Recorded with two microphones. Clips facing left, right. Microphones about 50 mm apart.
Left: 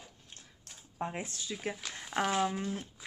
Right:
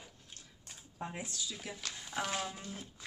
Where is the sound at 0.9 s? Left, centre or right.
Left.